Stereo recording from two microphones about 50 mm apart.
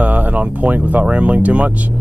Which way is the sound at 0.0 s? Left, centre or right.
Right.